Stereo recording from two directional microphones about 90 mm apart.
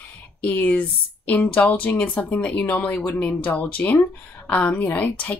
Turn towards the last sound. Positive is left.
turn(degrees=15)  # may be behind; listen again after turning